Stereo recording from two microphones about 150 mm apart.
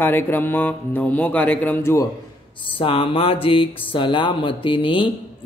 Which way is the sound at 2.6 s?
35° left (ahead or behind).